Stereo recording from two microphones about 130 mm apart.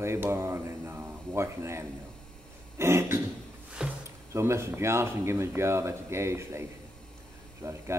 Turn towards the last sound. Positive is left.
turn(degrees=-20)  # may be behind; listen again after turning